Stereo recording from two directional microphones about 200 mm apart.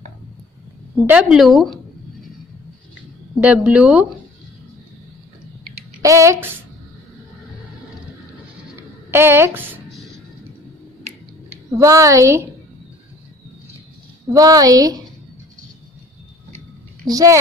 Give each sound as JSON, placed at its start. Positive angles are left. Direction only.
{"t": 1.0, "sound": "a woman's voice", "side_deg": -5}
{"t": 3.4, "sound": "a woman's voice", "side_deg": -5}
{"t": 6.0, "sound": "a woman's voice", "side_deg": -15}
{"t": 9.1, "sound": "a woman's voice", "side_deg": -10}
{"t": 9.8, "sound": "music", "side_deg": 0}
{"t": 11.7, "sound": "a woman's voice", "side_deg": -15}
{"t": 14.3, "sound": "a woman's voice", "side_deg": -20}
{"t": 17.1, "sound": "a woman's voice", "side_deg": -15}